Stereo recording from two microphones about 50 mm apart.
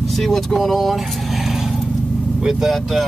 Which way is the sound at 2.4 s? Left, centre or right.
Centre.